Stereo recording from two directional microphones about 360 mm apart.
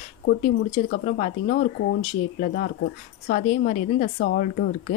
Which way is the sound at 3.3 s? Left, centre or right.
Left.